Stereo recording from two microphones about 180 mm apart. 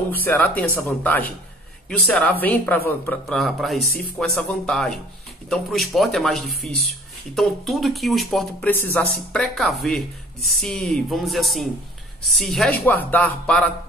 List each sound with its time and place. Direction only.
0.1 s speech: 10° left (ahead or behind)